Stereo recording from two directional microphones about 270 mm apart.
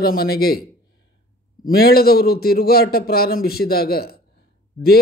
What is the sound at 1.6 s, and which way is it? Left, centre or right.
A man's voice, left.